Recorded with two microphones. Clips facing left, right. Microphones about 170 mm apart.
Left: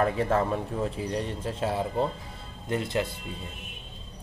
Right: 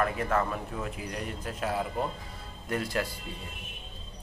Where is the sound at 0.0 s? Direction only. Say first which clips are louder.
Left 3 dB; 30° left (ahead or behind).